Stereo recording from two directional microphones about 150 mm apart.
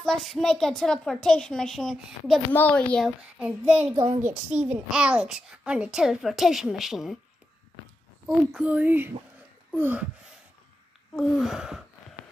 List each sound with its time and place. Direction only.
0.0 s a child's voice: centre (ahead or behind)
2.5 s a woman's voice: 10° left (ahead or behind)
3.3 s child singing: 5° right (ahead or behind)
4.0 s a woman's voice: 45° right (ahead or behind)
4.3 s a child's voice: 5° right (ahead or behind)
8.5 s child singing: 10° right (ahead or behind)
9.7 s speech: 10° right (ahead or behind)
11.1 s a child's voice: centre (ahead or behind)